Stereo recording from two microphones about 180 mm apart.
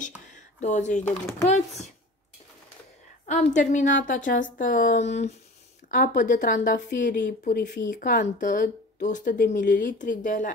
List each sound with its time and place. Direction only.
0.6 s speech: 40° left (ahead or behind)
3.3 s speech: 45° left (ahead or behind)
7.4 s speech: 65° left (ahead or behind)
7.9 s speech: 50° left (ahead or behind)